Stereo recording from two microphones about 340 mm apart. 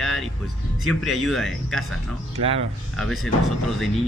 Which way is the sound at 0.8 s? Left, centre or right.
Centre.